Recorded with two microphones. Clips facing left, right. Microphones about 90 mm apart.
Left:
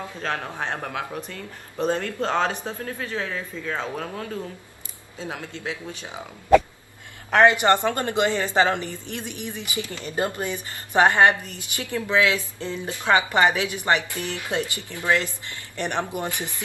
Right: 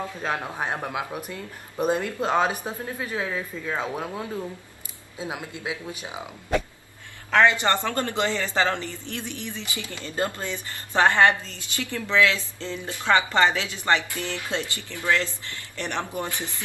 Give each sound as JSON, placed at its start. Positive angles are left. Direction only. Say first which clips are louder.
{"t": 0.2, "sound": "speech", "louder": "left 1 dB", "side_deg": -10}
{"t": 7.3, "sound": "a woman's voice", "louder": "left 3 dB", "side_deg": 20}